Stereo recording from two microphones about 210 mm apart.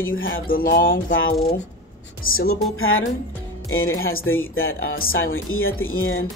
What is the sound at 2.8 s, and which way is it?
Speech, 75° left (ahead or behind).